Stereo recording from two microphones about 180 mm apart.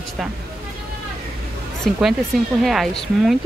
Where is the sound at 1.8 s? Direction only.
Centre (ahead or behind).